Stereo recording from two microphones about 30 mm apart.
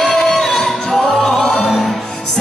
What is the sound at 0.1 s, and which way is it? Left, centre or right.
Music, centre.